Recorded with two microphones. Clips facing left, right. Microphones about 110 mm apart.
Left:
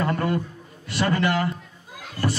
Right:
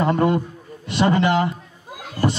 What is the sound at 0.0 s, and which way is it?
Speech, 20° right (ahead or behind).